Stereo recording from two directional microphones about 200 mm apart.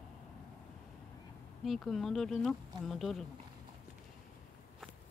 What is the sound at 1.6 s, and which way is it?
Speech, centre (ahead or behind).